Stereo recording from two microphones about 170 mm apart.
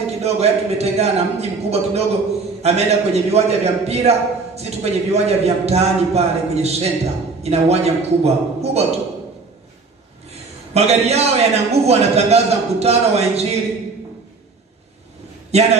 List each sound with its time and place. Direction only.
0.0 s a man's voice: 40° right (ahead or behind)
10.7 s a man's voice: 40° right (ahead or behind)
15.5 s a man's voice: 40° right (ahead or behind)